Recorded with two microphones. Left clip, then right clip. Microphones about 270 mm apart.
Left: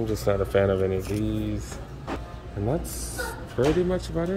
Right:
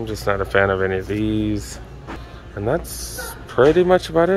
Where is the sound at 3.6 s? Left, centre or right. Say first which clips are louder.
Right 10 dB; centre.